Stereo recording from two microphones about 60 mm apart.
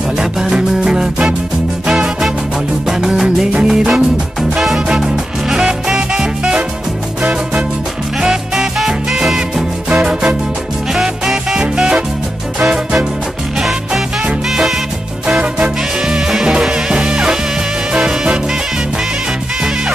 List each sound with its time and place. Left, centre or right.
0.2 s music: centre
3.9 s music: centre
8.2 s music: centre